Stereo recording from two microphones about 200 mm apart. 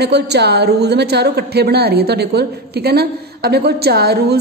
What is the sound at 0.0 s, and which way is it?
A woman's voice, 55° right (ahead or behind).